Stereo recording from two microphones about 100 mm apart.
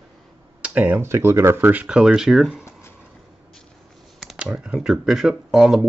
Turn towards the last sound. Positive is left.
turn(degrees=-5)  # may be behind; listen again after turning